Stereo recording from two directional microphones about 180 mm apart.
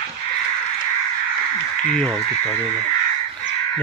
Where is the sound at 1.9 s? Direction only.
5° left (ahead or behind).